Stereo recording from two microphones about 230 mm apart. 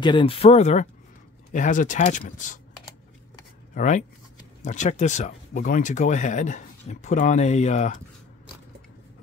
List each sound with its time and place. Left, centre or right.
0.0 s speech: left
3.7 s speech: left